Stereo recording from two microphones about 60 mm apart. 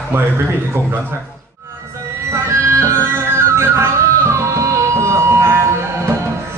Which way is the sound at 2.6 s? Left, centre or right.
Right.